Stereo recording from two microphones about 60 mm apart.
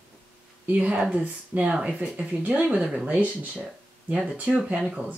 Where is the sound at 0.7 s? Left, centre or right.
Right.